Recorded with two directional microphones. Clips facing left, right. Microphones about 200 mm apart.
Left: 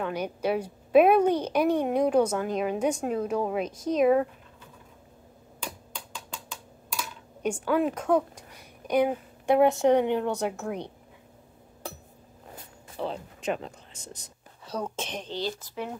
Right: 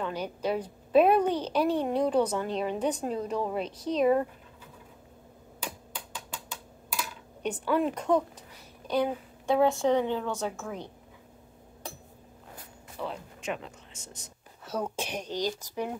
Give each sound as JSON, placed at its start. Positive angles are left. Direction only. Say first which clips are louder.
{"t": 0.1, "sound": "a woman's voice", "louder": "left 3 dB", "side_deg": 10}
{"t": 7.4, "sound": "a woman's voice", "louder": "left 2 dB", "side_deg": 5}
{"t": 12.9, "sound": "speech", "louder": "left 4 dB", "side_deg": 30}
{"t": 14.6, "sound": "speech", "louder": "even", "side_deg": -5}